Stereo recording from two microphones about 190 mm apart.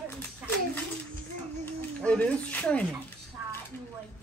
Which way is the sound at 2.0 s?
5° left (ahead or behind).